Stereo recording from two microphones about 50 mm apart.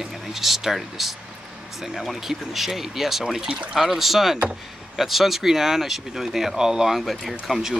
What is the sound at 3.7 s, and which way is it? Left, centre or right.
Speech, centre.